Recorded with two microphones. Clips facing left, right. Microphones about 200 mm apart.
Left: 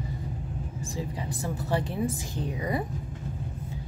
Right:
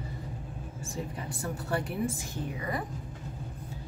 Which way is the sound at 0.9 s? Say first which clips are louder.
Left 2 dB; 90° left.